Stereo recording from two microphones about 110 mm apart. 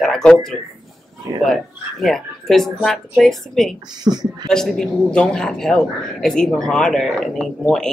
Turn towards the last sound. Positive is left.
turn(degrees=5)  # may be behind; listen again after turning